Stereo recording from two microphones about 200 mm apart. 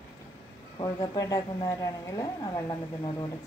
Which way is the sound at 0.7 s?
20° left (ahead or behind).